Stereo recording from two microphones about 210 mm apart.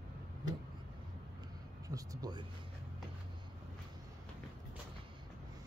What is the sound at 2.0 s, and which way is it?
Speech, 20° right (ahead or behind).